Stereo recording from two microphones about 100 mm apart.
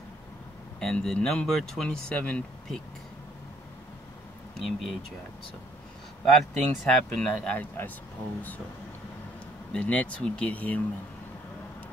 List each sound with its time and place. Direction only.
0.7 s speech: 5° left (ahead or behind)
4.6 s speech: centre (ahead or behind)
6.2 s speech: centre (ahead or behind)
7.5 s speech: 20° left (ahead or behind)
9.7 s speech: 10° left (ahead or behind)